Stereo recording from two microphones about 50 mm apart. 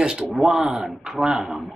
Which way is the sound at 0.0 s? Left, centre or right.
Centre.